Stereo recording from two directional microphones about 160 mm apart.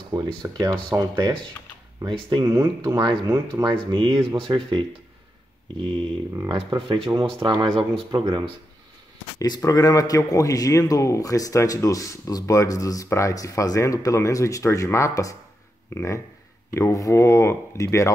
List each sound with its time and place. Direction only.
0.1 s speech: 20° right (ahead or behind)
2.4 s speech: 20° right (ahead or behind)
3.6 s speech: 30° right (ahead or behind)
7.1 s speech: 20° right (ahead or behind)
9.4 s a man's voice: 20° left (ahead or behind)